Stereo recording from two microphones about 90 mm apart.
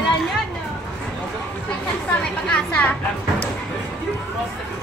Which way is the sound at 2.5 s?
10° left (ahead or behind).